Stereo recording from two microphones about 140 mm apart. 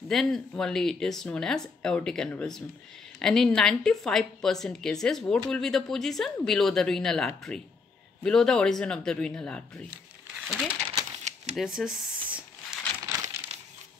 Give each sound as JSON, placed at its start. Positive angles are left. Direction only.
{"t": 0.1, "sound": "speech", "side_deg": 5}
{"t": 10.3, "sound": "crumpling", "side_deg": 0}
{"t": 11.5, "sound": "a sound", "side_deg": -5}
{"t": 13.1, "sound": "crumpling", "side_deg": -25}